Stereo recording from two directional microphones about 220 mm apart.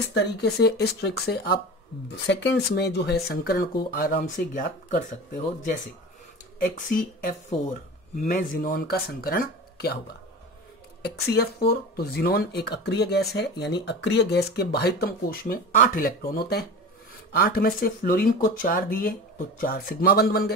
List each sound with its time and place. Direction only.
0.1 s speech: 50° left (ahead or behind)
6.6 s speech: 40° left (ahead or behind)